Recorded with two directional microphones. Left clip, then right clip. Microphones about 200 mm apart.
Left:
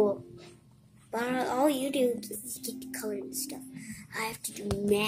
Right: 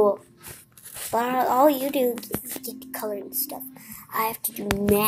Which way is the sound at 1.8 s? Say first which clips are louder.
Right 4 dB; 60° right (ahead or behind).